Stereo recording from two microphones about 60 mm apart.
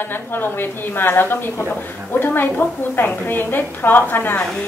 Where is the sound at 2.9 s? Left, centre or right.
Left.